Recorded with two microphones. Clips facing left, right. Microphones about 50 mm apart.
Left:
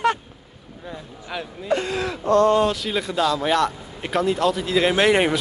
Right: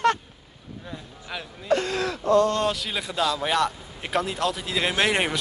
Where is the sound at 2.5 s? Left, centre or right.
Centre.